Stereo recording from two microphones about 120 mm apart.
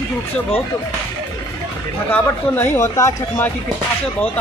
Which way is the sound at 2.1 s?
20° left (ahead or behind).